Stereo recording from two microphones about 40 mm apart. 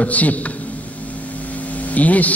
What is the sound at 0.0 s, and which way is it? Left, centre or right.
Speech, left.